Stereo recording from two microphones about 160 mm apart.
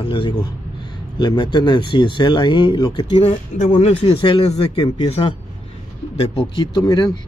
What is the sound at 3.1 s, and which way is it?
Speech, 45° left (ahead or behind).